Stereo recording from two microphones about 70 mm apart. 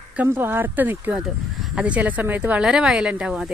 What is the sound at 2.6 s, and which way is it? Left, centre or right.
Speech, centre.